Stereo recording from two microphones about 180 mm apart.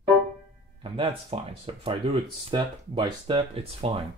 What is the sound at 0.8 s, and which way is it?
Speech, 30° right (ahead or behind).